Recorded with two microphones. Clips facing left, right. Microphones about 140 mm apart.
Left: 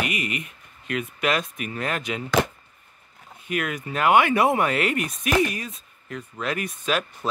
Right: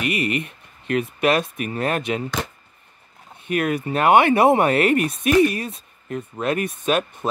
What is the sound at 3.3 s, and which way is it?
Speech, 30° right (ahead or behind).